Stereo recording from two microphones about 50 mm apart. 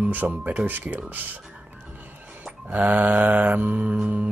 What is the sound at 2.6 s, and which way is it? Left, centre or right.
Speech, right.